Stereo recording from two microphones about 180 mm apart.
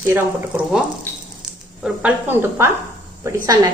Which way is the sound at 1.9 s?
10° right (ahead or behind).